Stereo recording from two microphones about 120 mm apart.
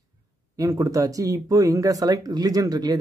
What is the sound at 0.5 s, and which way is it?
Speech, 30° right (ahead or behind).